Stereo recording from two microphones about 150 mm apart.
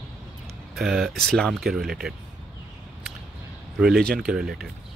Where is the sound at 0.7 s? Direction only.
Centre (ahead or behind).